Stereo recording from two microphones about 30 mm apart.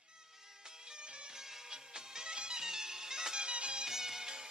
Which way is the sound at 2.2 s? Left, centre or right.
Right.